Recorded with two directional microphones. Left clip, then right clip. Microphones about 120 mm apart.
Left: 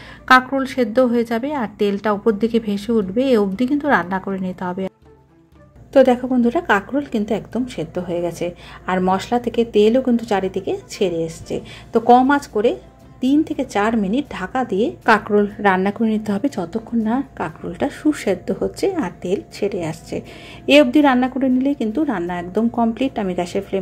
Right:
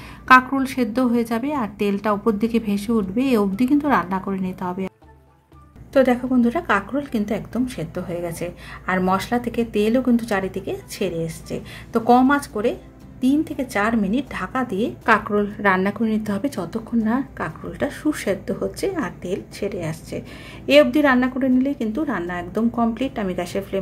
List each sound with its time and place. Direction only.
0.5 s a woman's voice: 15° left (ahead or behind)
5.9 s a woman's voice: 20° left (ahead or behind)